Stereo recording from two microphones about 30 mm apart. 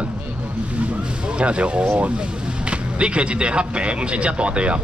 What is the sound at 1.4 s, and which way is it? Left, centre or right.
Speech, right.